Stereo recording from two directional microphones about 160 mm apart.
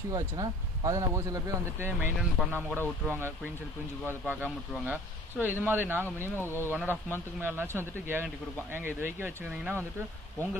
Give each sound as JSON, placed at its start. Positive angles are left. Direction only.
{"t": 0.1, "sound": "speech", "side_deg": -20}
{"t": 4.8, "sound": "speech", "side_deg": -10}